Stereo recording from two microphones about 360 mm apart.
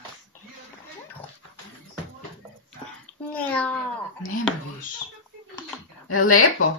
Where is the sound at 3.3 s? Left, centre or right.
Centre.